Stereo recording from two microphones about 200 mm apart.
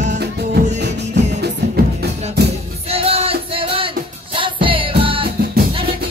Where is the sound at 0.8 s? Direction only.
60° right (ahead or behind).